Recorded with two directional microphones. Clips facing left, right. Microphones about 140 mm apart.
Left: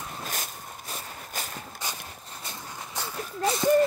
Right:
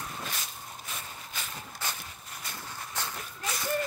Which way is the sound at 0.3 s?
45° left (ahead or behind).